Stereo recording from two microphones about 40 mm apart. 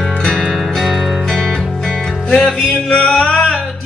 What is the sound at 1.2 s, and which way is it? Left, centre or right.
Music, centre.